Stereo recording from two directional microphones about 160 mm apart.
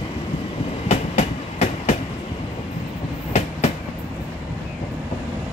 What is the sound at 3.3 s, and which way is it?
Train, 45° left (ahead or behind).